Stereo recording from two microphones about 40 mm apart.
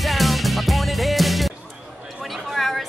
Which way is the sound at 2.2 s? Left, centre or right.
Centre.